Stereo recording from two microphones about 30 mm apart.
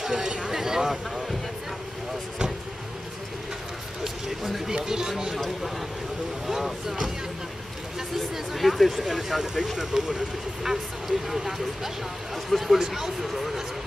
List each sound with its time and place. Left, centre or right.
0.0 s speech: right
4.0 s a sound: centre
4.6 s speech: centre
6.4 s speech: centre
8.5 s speech: centre